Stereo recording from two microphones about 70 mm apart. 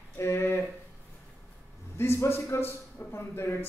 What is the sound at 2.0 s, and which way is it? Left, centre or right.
Music, left.